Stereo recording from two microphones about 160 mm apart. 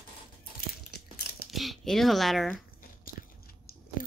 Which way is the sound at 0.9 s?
80° left.